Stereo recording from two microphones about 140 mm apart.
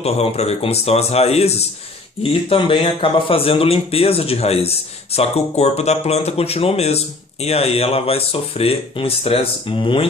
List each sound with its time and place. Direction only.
0.0 s speech: 45° left (ahead or behind)